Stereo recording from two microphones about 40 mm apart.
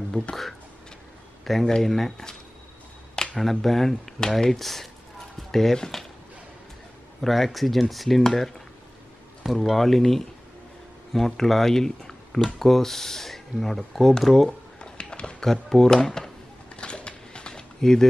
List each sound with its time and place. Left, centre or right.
0.2 s speech: left
1.4 s speech: centre
3.3 s speech: centre
7.2 s speech: centre
9.7 s speech: centre
14.8 s a sound: left
15.4 s speech: centre
16.7 s a sound: left